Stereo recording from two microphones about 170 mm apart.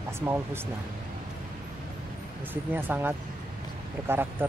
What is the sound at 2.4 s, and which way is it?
Speech, 10° right (ahead or behind).